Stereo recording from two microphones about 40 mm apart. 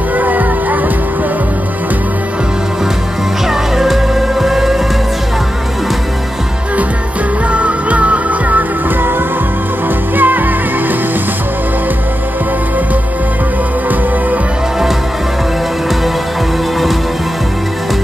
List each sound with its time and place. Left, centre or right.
0.1 s music: right
3.4 s music: centre
7.5 s music: right
10.1 s music: right